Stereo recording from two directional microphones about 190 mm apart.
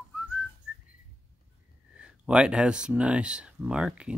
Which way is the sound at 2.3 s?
5° right (ahead or behind).